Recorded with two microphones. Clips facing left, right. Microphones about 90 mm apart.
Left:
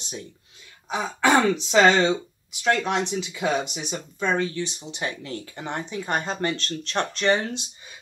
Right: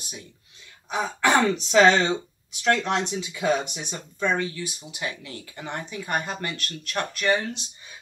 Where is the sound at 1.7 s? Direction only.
20° left (ahead or behind).